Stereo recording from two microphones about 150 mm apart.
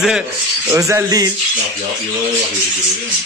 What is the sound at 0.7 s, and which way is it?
Speech, 20° right (ahead or behind).